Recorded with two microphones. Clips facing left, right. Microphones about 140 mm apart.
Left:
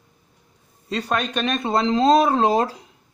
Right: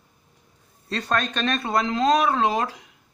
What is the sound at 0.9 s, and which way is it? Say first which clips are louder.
Speech: left 2 dB; 10° left (ahead or behind).